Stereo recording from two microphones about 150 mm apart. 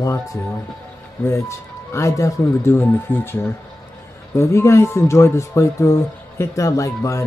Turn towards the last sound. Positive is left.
turn(degrees=20)  # may be behind; listen again after turning